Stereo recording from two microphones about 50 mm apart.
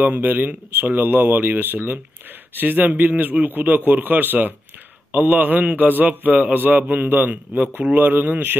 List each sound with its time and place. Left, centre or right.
0.0 s a man's voice: right